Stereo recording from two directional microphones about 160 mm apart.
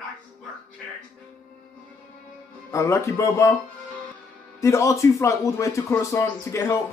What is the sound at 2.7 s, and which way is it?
Speech, 20° left (ahead or behind).